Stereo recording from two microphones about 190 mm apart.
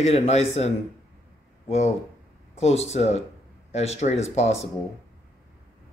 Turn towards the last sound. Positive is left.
turn(degrees=35)  # may be behind; listen again after turning